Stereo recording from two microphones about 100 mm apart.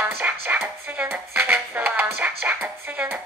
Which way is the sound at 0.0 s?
20° right (ahead or behind).